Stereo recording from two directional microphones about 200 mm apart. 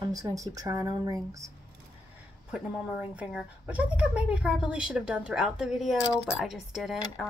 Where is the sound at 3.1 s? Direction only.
5° right (ahead or behind).